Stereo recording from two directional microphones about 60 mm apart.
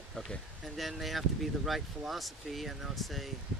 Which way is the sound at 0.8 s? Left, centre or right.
Centre.